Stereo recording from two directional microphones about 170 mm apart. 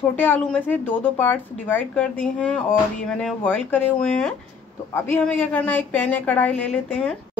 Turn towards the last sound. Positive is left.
turn(degrees=5)  # may be behind; listen again after turning